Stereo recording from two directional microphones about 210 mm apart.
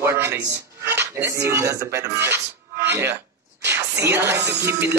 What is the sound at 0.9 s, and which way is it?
Dishes, 10° right (ahead or behind).